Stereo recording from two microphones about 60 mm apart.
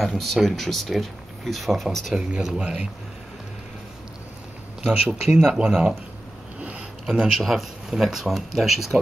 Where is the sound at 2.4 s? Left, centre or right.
Centre.